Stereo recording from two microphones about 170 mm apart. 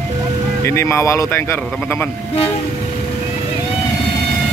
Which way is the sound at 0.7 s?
15° left (ahead or behind).